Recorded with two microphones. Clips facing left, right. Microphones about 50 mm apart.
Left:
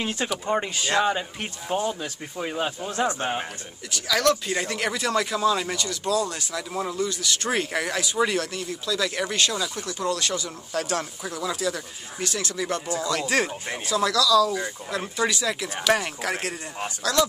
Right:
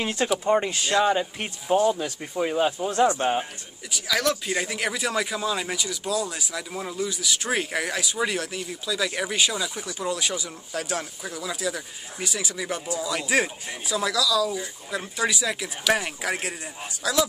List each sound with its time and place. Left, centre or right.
0.3 s speech: centre
0.9 s speech: left
1.7 s speech: centre
3.9 s speech: centre